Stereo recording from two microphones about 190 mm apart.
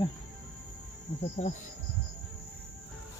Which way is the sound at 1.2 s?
35° left (ahead or behind).